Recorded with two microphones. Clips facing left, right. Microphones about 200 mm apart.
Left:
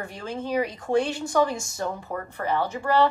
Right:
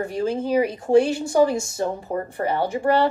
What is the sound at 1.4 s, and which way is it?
Speech, 30° right (ahead or behind).